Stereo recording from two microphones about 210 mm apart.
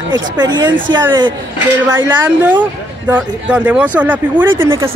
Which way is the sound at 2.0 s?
10° right (ahead or behind).